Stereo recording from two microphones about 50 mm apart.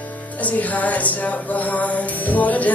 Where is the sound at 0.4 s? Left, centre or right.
Left.